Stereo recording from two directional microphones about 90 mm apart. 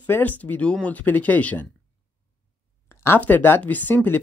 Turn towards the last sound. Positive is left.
turn(degrees=20)  # may be behind; listen again after turning